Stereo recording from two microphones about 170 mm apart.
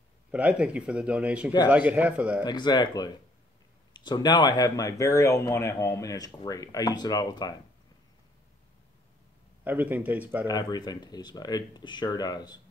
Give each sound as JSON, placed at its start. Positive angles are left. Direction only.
{"t": 0.3, "sound": "speech", "side_deg": -10}
{"t": 2.4, "sound": "speech", "side_deg": 25}
{"t": 9.7, "sound": "speech", "side_deg": -10}
{"t": 10.4, "sound": "speech", "side_deg": 25}